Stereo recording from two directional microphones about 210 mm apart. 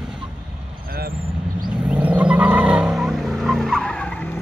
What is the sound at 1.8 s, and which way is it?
Vehicle, 5° right (ahead or behind).